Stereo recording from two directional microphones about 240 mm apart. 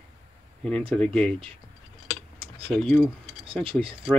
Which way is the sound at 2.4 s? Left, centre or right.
Right.